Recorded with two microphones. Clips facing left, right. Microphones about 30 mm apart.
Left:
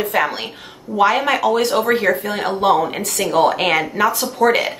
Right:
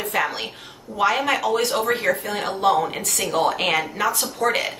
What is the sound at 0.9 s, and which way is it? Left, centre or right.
A woman's voice, centre.